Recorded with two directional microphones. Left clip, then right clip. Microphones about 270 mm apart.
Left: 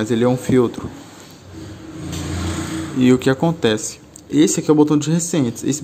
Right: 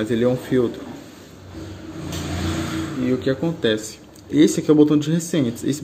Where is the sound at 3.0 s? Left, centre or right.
Left.